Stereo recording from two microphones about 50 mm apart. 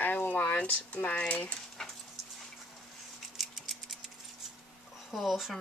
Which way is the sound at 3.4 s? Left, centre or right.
Centre.